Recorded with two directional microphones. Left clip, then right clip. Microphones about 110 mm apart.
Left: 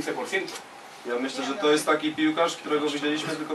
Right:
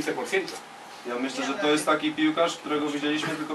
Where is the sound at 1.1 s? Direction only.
5° left (ahead or behind).